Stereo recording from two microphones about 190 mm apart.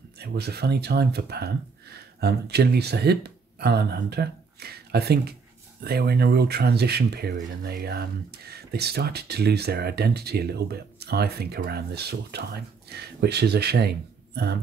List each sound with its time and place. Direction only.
0.2 s speech: 55° right (ahead or behind)